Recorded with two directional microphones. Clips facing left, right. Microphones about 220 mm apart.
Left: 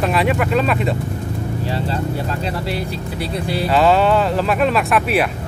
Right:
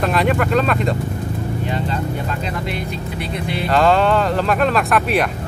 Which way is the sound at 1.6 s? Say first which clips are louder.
Left 1 dB; 35° left (ahead or behind).